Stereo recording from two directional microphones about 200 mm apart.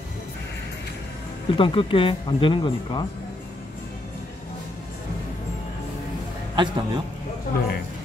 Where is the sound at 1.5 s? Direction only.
25° left (ahead or behind).